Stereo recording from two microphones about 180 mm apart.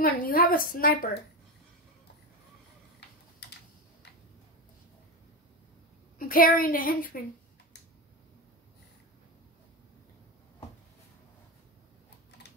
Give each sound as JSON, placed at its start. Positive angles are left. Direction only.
{"t": 0.0, "sound": "a woman's voice", "side_deg": 55}
{"t": 3.4, "sound": "typing", "side_deg": 70}
{"t": 6.1, "sound": "a woman's voice", "side_deg": 50}